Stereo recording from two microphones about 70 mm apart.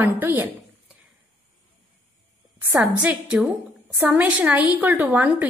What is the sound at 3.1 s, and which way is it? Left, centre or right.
Speech, centre.